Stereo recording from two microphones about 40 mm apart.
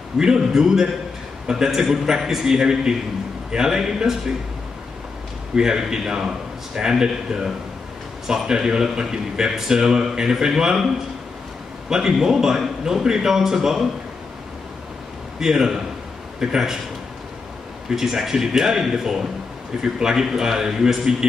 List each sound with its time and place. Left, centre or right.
0.2 s speech: centre
5.6 s speech: centre
11.9 s speech: centre
15.3 s a man's voice: centre
17.8 s speech: centre